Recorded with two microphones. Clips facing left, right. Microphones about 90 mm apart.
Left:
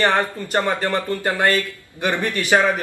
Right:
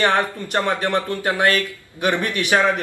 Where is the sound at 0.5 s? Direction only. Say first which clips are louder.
Left 1 dB; 10° left (ahead or behind).